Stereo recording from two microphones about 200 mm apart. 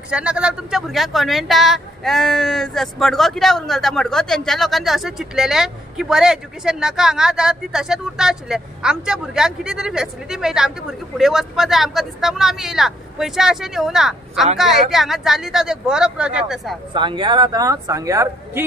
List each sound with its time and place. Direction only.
0.1 s speech: 5° right (ahead or behind)
16.9 s speech: 25° right (ahead or behind)